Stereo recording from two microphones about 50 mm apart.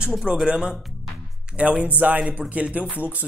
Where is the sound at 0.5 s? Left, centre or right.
Centre.